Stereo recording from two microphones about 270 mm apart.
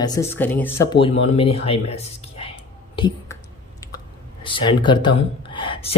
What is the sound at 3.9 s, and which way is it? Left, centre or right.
Speech, centre.